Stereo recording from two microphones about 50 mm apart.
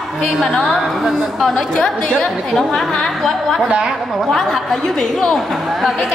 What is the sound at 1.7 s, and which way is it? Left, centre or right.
A woman's voice, centre.